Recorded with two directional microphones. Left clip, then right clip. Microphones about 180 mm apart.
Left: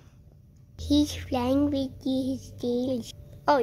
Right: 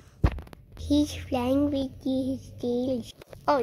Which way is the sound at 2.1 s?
20° left (ahead or behind).